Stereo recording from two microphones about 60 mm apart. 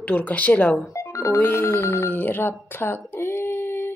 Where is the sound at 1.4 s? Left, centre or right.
Left.